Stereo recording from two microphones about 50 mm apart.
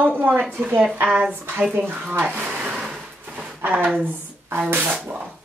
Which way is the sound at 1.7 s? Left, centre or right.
Right.